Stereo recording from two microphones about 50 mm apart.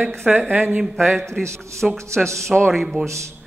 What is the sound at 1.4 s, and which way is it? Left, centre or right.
Speech, right.